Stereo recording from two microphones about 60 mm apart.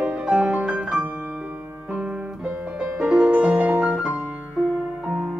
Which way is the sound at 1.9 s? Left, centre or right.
Right.